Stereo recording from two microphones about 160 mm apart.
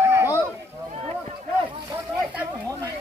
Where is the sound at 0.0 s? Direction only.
15° right (ahead or behind).